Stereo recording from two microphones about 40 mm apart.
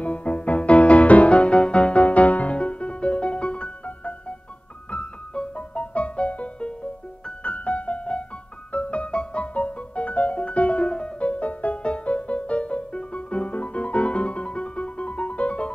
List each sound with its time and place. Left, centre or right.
0.0 s music: left